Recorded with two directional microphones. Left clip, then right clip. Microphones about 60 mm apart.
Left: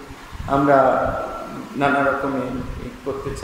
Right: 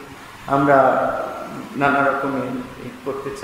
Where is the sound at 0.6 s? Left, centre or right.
Centre.